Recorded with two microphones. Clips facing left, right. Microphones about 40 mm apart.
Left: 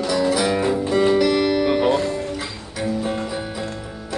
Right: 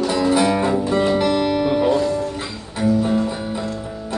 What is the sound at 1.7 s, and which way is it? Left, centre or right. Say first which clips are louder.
Music: right 1 dB; left.